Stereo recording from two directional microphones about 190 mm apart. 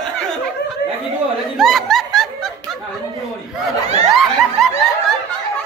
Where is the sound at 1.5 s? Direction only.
Centre (ahead or behind).